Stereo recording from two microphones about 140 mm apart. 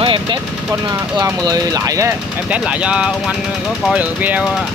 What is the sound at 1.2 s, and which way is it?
Speech, 25° right (ahead or behind).